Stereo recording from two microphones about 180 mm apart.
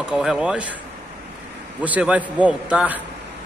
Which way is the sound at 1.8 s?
5° right (ahead or behind).